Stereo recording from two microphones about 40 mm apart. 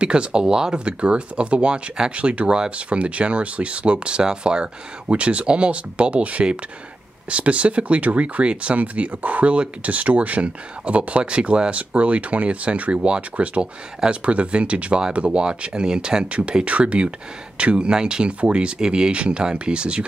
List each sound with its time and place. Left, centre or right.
0.0 s speech: right
16.3 s speech: right